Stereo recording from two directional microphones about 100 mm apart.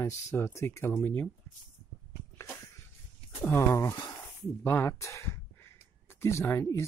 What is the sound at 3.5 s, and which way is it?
Speech, 25° left (ahead or behind).